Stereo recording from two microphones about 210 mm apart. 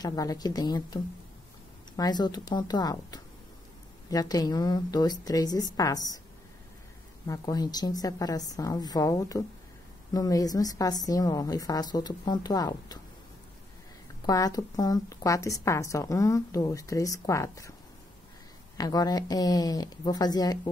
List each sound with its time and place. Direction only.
0.0 s speech: 15° left (ahead or behind)
2.0 s a woman's voice: 20° left (ahead or behind)
7.2 s a woman's voice: 15° left (ahead or behind)
14.2 s a woman's voice: 15° left (ahead or behind)
18.8 s a woman's voice: 20° left (ahead or behind)